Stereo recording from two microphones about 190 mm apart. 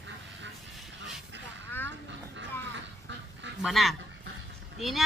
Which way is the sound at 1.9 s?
70° right (ahead or behind).